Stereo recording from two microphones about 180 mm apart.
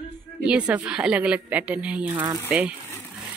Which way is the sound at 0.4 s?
5° right (ahead or behind).